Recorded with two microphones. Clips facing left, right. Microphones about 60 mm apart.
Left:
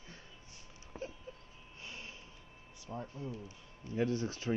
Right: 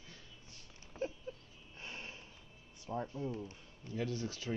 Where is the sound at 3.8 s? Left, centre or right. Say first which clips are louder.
Left 5 dB; left.